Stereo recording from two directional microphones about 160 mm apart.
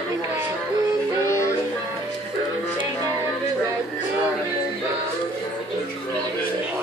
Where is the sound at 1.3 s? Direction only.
15° left (ahead or behind).